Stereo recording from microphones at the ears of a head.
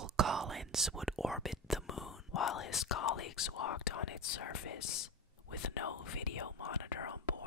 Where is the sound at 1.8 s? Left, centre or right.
Left.